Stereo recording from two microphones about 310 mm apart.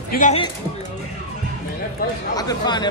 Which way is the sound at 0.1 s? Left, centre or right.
Left.